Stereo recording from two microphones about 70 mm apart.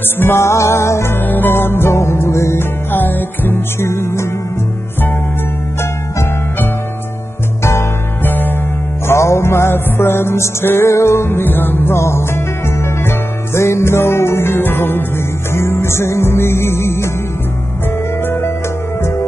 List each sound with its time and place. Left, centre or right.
0.2 s music: left
1.2 s music: left
3.0 s music: left
7.6 s music: left
9.0 s music: left
18.2 s music: left